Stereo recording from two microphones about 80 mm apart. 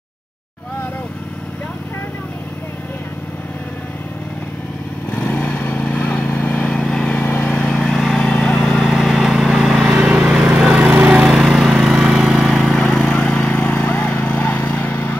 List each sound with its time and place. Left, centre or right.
5.1 s vehicle: left
7.2 s vehicle: left
7.5 s vehicle: centre
10.5 s a sound: centre
11.2 s lawn mower: centre
12.5 s vehicle: centre; by 15.1 s left